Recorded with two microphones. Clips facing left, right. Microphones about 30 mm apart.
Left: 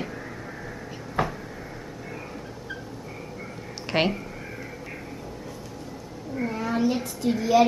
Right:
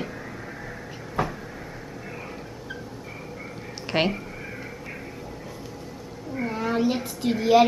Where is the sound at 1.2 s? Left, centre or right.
Centre.